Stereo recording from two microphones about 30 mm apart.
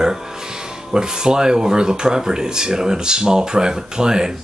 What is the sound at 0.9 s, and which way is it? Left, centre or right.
Speech, right.